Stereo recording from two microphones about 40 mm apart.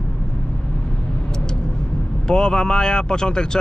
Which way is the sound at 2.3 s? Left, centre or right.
Left.